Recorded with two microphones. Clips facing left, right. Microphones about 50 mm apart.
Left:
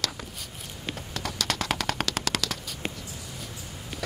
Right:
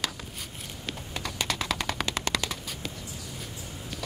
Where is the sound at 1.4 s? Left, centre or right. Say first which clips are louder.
Left 2 dB; left.